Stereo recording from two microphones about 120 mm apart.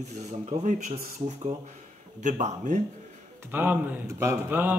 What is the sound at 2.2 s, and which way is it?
Speech, 85° right.